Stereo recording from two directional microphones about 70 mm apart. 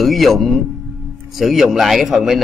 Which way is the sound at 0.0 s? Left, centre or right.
Centre.